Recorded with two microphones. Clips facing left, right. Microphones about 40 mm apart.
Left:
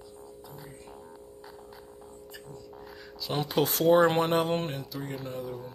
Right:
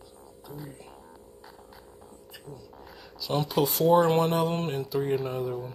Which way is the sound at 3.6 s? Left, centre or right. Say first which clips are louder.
Right 1 dB; left.